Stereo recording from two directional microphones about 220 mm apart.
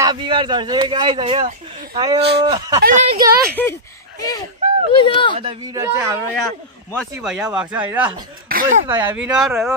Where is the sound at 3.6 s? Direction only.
10° left (ahead or behind).